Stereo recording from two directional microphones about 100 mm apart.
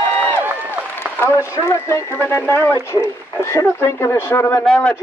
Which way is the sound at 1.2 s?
30° left (ahead or behind).